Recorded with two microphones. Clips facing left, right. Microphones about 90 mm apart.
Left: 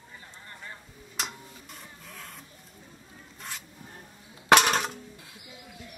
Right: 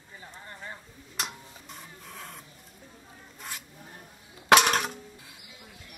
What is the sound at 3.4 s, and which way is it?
Zipper, 5° right (ahead or behind).